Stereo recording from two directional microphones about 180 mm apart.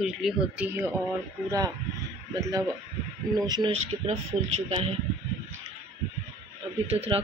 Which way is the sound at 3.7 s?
35° right (ahead or behind).